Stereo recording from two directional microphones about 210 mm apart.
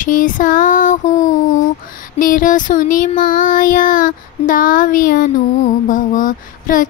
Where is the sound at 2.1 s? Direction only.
40° left (ahead or behind).